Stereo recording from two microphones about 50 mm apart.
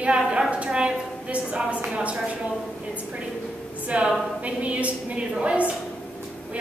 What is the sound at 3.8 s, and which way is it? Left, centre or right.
A woman's voice, right.